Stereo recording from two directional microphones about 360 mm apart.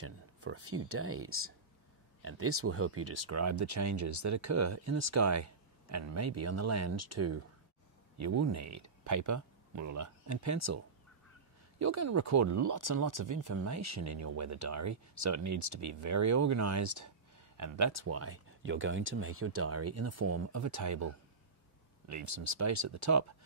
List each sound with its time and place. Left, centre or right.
0.0 s speech: right
11.8 s speech: right